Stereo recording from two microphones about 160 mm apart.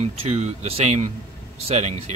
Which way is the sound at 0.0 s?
40° right (ahead or behind).